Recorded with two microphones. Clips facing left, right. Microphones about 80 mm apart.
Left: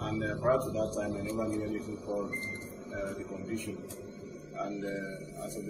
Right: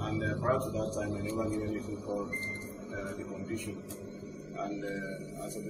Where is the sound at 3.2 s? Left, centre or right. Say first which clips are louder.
Left 1 dB; centre.